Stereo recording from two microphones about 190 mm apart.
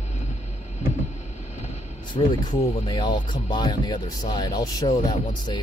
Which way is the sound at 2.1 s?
25° left (ahead or behind).